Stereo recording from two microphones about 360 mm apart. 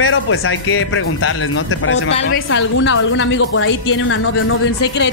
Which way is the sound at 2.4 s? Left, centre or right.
Left.